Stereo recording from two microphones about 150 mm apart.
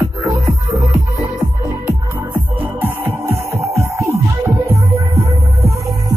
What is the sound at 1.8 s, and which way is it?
Music, 15° right (ahead or behind).